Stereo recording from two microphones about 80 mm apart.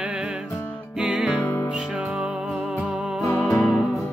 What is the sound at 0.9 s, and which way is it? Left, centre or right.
Music, centre.